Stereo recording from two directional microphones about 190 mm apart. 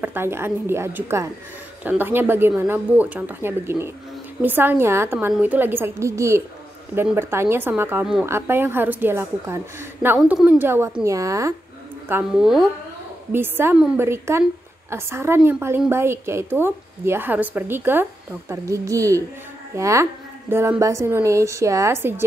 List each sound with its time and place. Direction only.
0.0 s a woman's voice: 10° right (ahead or behind)
12.1 s a woman's voice: 5° right (ahead or behind)